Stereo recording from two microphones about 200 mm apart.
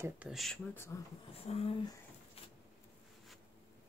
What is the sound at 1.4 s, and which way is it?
Speech, 30° left (ahead or behind).